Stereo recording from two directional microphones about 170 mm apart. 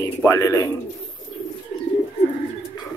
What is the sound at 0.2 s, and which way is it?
Speech, 15° left (ahead or behind).